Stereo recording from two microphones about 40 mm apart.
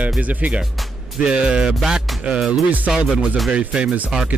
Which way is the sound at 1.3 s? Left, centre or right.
Right.